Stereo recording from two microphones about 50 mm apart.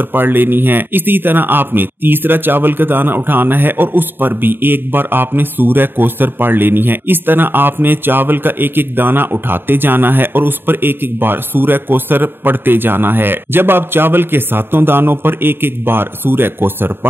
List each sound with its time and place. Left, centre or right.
0.0 s a man's voice: right